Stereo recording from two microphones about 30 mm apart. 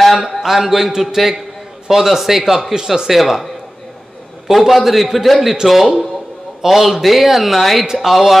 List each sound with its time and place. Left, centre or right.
0.1 s a man's voice: centre
4.5 s a man's voice: centre
7.8 s a man's voice: centre
8.1 s a man's voice: centre